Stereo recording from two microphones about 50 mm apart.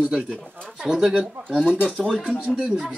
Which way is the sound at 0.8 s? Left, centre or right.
Centre.